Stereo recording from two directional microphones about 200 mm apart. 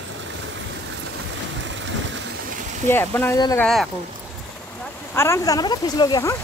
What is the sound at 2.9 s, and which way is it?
Speech, 10° left (ahead or behind).